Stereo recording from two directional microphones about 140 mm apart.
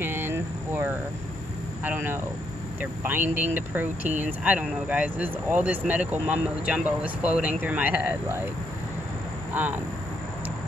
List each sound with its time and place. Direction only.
0.0 s a sound: 15° right (ahead or behind)
1.9 s speech: 15° right (ahead or behind)
9.5 s speech: 10° right (ahead or behind)